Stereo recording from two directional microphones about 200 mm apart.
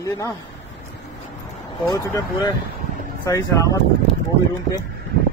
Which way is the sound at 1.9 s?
20° left (ahead or behind).